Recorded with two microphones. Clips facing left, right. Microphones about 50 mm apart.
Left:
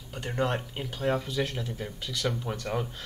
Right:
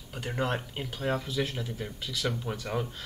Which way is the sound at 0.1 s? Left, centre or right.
Centre.